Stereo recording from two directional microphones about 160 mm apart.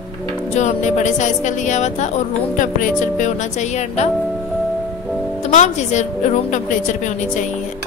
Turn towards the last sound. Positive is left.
turn(degrees=50)  # may be behind; listen again after turning